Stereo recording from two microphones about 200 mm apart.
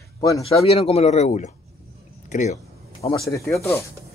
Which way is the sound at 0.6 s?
30° left (ahead or behind).